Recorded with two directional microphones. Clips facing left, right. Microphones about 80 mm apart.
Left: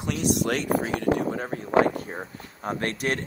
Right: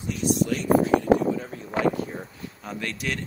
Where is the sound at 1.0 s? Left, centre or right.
Left.